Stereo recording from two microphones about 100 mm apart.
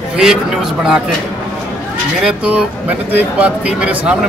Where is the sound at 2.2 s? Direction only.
10° right (ahead or behind).